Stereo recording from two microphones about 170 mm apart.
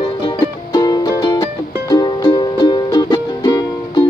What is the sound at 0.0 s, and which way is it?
Music, 25° left (ahead or behind).